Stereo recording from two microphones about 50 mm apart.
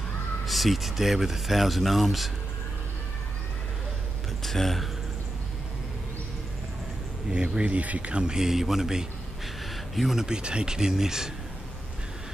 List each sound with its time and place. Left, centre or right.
0.5 s speech: centre
4.4 s a sound: centre
7.2 s speech: centre
10.2 s speech: centre